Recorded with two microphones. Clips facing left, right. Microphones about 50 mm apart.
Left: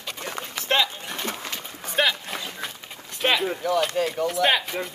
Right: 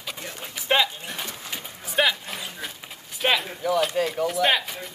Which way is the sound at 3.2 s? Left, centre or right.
Centre.